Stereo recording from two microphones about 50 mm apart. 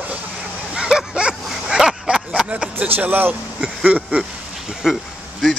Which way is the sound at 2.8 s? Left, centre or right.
Right.